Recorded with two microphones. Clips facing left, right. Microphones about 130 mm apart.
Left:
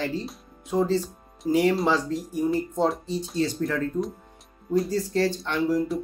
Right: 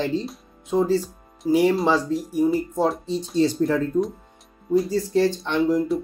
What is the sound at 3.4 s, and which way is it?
Speech, 30° right (ahead or behind).